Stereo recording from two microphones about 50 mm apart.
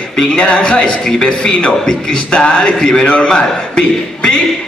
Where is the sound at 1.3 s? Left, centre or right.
Left.